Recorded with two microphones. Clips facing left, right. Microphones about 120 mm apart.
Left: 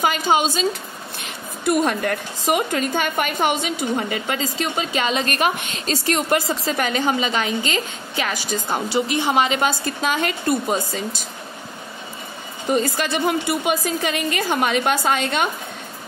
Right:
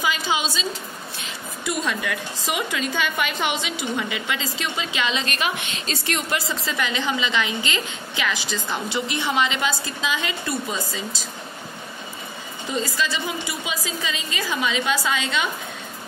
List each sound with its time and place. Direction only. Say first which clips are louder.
0.0 s a woman's voice: left 6 dB; 50° left (ahead or behind)
12.6 s a woman's voice: left 5 dB; 60° left (ahead or behind)